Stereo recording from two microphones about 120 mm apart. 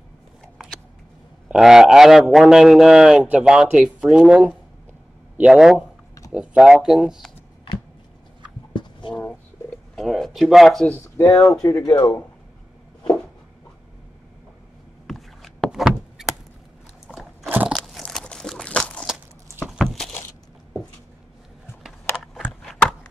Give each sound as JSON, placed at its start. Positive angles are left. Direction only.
{"t": 1.5, "sound": "a man's voice", "side_deg": -5}
{"t": 8.7, "sound": "a sound", "side_deg": 40}
{"t": 9.9, "sound": "speech", "side_deg": 0}
{"t": 11.1, "sound": "speech", "side_deg": 30}
{"t": 15.0, "sound": "rowboat", "side_deg": 0}
{"t": 17.1, "sound": "crunch", "side_deg": 0}
{"t": 17.5, "sound": "crunch", "side_deg": -15}
{"t": 17.7, "sound": "crunch", "side_deg": 0}
{"t": 19.8, "sound": "a sound", "side_deg": 0}
{"t": 21.8, "sound": "a sound", "side_deg": 0}